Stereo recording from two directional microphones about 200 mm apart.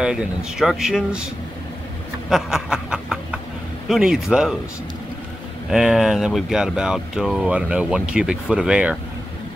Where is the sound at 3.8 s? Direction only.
Centre (ahead or behind).